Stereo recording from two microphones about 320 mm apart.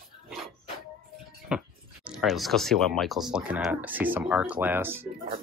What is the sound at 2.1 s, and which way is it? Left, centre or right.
Speech, centre.